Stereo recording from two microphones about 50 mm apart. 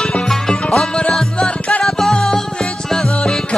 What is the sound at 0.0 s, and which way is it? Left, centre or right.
Music, centre.